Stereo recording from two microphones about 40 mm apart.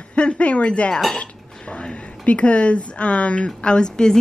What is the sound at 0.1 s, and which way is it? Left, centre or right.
Speech, left.